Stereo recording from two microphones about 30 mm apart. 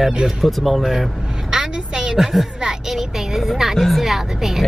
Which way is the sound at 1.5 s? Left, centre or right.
Right.